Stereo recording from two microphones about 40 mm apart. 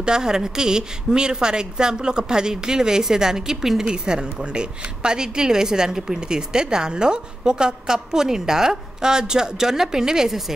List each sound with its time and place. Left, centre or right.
0.0 s a woman's voice: centre